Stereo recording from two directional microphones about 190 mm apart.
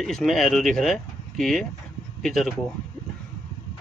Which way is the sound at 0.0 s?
Centre (ahead or behind).